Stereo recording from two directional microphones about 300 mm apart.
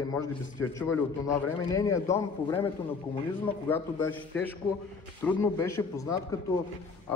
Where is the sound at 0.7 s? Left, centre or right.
Centre.